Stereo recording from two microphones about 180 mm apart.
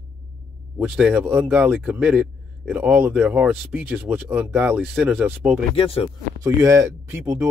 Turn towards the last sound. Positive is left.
turn(degrees=-15)  # may be behind; listen again after turning